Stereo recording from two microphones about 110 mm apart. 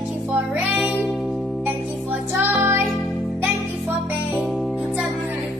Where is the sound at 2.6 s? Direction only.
20° right (ahead or behind).